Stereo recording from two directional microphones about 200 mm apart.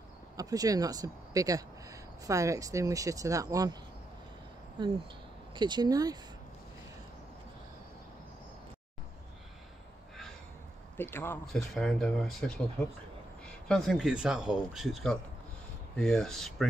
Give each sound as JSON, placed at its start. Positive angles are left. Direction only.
{"t": 0.4, "sound": "speech", "side_deg": -15}
{"t": 4.8, "sound": "speech", "side_deg": -25}
{"t": 11.0, "sound": "a man's voice", "side_deg": 10}